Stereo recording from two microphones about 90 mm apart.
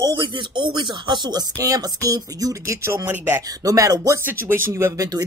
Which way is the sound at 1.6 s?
40° right (ahead or behind).